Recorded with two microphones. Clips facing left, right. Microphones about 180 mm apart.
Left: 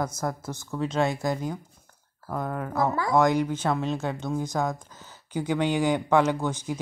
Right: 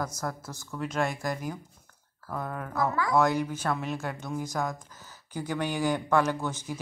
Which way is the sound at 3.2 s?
15° left (ahead or behind).